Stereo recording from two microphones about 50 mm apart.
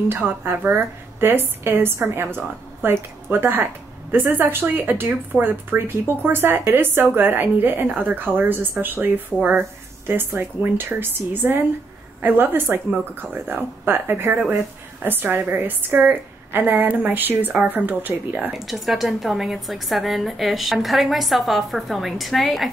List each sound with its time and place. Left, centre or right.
0.1 s a woman's voice: right
18.5 s a woman's voice: centre